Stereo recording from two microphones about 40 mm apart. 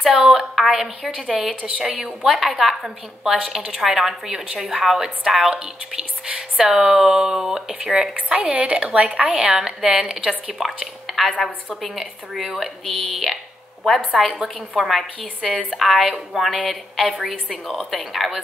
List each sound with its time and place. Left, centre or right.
0.1 s speech: centre
2.2 s speech: centre
8.3 s a woman's voice: right
9.6 s speech: centre
9.8 s a woman's voice: right
10.2 s a woman's voice: centre
17.5 s speech: centre